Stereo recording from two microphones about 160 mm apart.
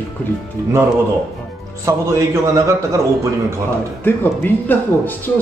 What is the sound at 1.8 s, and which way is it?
A man's voice, 20° right (ahead or behind).